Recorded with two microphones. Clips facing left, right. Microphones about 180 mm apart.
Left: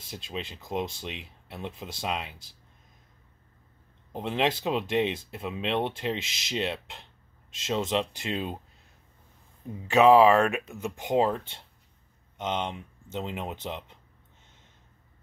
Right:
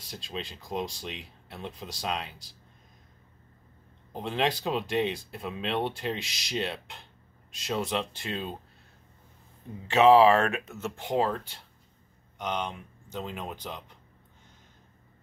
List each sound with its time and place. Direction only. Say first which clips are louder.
0.1 s speech: left 1 dB; 20° left (ahead or behind)
4.1 s speech: left 1 dB; 20° left (ahead or behind)
9.8 s speech: left 1 dB; 15° left (ahead or behind)